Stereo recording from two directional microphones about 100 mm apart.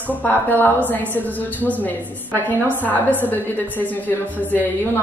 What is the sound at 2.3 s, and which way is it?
A woman's voice, 15° left (ahead or behind).